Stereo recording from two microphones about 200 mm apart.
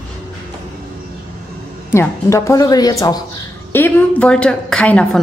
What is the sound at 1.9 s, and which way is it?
A woman's voice, 15° left (ahead or behind).